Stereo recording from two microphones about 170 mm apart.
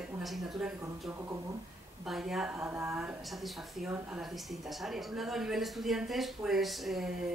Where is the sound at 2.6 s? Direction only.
15° right (ahead or behind).